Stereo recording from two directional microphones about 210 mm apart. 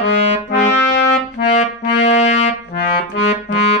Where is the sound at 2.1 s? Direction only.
30° left (ahead or behind).